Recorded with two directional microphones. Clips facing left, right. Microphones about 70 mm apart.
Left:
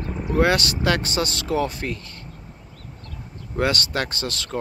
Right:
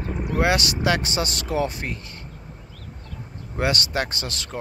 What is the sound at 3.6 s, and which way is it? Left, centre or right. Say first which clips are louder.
Speech: left 1 dB; centre.